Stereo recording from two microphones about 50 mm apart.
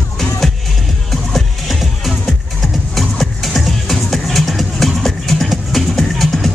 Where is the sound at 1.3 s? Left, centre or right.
Centre.